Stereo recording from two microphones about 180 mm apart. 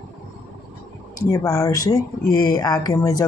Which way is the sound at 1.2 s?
15° left (ahead or behind).